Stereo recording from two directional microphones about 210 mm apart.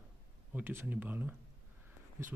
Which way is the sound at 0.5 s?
10° right (ahead or behind).